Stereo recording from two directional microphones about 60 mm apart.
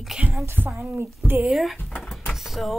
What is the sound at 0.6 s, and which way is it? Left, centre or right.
Speech, left.